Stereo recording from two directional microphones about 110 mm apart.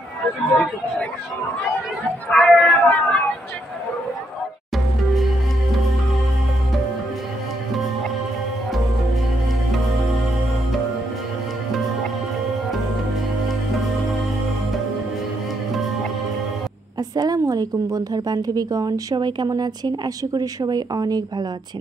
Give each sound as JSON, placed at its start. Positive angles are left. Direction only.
{"t": 0.5, "sound": "speech", "side_deg": 10}
{"t": 2.2, "sound": "speech", "side_deg": 10}
{"t": 17.1, "sound": "a woman's voice", "side_deg": -35}